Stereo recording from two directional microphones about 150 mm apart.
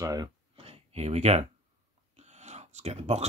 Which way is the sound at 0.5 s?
40° right (ahead or behind).